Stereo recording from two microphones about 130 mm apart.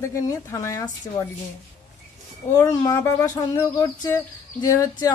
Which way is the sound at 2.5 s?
30° left (ahead or behind).